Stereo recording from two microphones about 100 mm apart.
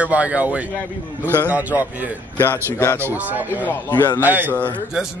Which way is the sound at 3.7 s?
25° left (ahead or behind).